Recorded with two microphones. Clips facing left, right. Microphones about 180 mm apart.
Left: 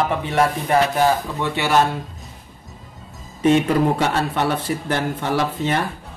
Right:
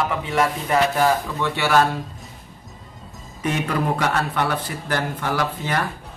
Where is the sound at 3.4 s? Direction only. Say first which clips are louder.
Left 7 dB; 25° left (ahead or behind).